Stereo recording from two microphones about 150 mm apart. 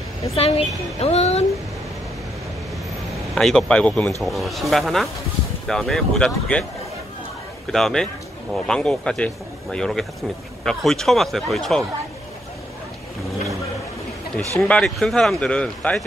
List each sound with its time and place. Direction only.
0.4 s a woman's voice: 40° left (ahead or behind)
3.3 s a man's voice: 5° left (ahead or behind)
7.7 s a man's voice: 5° left (ahead or behind)
14.6 s speech: 5° left (ahead or behind)